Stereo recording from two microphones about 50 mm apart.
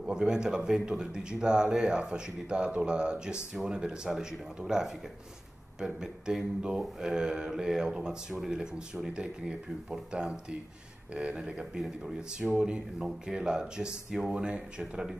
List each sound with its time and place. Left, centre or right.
0.0 s speech: centre